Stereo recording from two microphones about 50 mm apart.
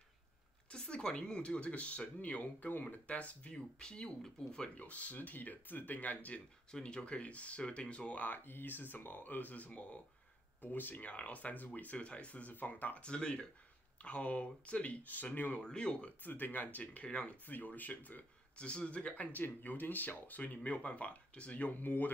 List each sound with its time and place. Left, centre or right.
0.7 s speech: left
3.5 s speech: centre
4.7 s speech: left
6.7 s speech: left
8.5 s speech: left
10.6 s speech: left
13.0 s speech: centre; by 15.6 s left
15.6 s speech: centre
16.1 s speech: left
17.5 s speech: left
18.6 s speech: left
19.3 s speech: left
21.8 s speech: left